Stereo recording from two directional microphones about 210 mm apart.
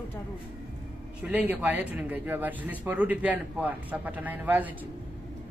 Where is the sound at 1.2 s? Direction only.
10° right (ahead or behind).